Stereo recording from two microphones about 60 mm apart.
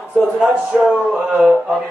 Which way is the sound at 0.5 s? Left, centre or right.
Right.